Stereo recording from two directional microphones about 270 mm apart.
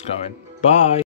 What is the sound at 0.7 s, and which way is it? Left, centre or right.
Speech, left.